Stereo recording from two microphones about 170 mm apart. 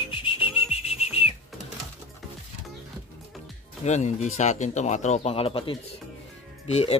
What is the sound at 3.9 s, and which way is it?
Speech, 45° left (ahead or behind).